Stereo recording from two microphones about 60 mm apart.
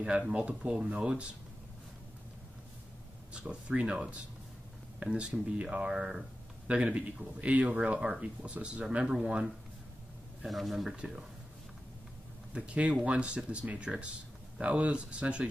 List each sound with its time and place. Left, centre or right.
0.3 s speech: right
3.3 s speech: centre
10.4 s speech: centre
12.5 s speech: right